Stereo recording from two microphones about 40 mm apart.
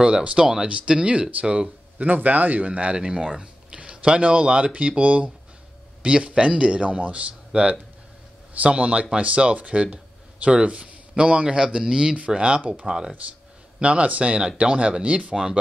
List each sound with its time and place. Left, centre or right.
0.0 s a man's voice: right
2.0 s a man's voice: right